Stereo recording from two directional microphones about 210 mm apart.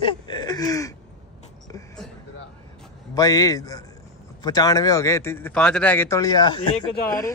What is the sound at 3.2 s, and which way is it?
Speech, 15° left (ahead or behind).